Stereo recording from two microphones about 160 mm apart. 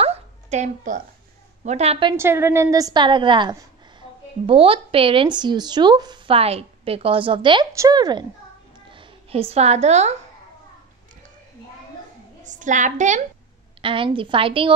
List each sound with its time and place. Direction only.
0.0 s a sound: 45° right (ahead or behind)
1.6 s speech: 45° right (ahead or behind)
2.1 s a woman's voice: 15° right (ahead or behind)
8.9 s a woman's voice: 40° right (ahead or behind)
12.4 s a woman's voice: 50° right (ahead or behind)
13.7 s speech: 35° right (ahead or behind)